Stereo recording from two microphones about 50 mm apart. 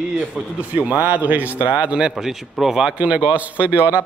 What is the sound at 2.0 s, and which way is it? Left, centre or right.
Speech, centre.